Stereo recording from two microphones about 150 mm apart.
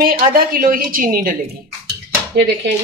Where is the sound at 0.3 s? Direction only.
75° right (ahead or behind).